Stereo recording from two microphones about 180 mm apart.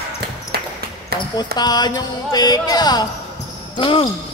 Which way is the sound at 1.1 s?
60° right (ahead or behind).